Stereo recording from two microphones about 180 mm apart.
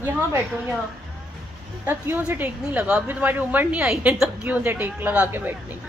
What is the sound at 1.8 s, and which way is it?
A woman's voice, 10° right (ahead or behind).